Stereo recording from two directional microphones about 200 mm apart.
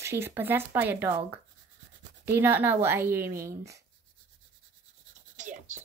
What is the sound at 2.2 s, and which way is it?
Speech, 10° right (ahead or behind).